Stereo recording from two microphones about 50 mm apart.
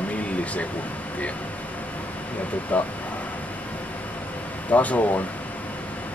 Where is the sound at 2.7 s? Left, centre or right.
Left.